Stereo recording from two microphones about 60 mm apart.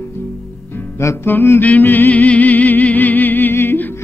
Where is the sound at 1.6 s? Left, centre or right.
Left.